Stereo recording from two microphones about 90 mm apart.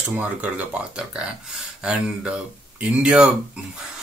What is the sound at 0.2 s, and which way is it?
Speech, 15° right (ahead or behind).